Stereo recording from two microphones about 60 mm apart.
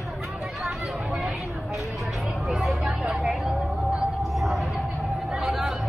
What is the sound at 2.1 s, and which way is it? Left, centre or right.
Speech, centre.